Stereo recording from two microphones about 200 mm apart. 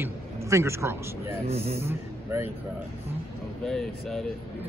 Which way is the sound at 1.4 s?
30° right (ahead or behind).